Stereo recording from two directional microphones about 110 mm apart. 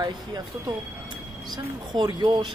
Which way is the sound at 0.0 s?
40° right (ahead or behind).